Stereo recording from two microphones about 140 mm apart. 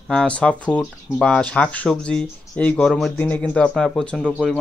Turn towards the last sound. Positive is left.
turn(degrees=5)  # may be behind; listen again after turning